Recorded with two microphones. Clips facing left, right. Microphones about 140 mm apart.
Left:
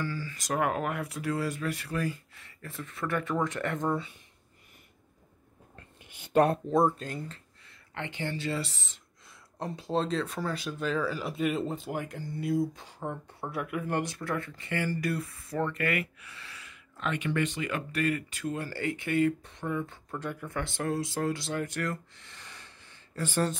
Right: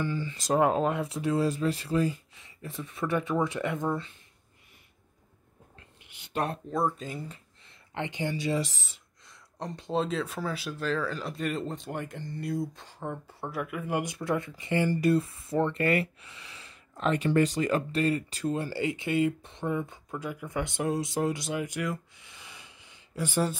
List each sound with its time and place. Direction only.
0.0 s speech: 20° right (ahead or behind)
6.0 s a sound: 45° left (ahead or behind)
7.0 s speech: 5° right (ahead or behind)
9.3 s speech: 5° left (ahead or behind); by 16.3 s 30° right (ahead or behind)
16.3 s gasp: 20° right (ahead or behind)
16.6 s speech: 35° right (ahead or behind); by 21.9 s 10° right (ahead or behind)
22.1 s a sound: 10° right (ahead or behind)